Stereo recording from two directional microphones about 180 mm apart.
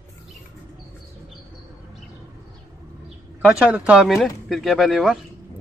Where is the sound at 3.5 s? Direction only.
5° right (ahead or behind).